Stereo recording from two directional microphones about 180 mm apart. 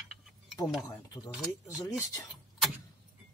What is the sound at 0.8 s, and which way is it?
Speech, 20° left (ahead or behind).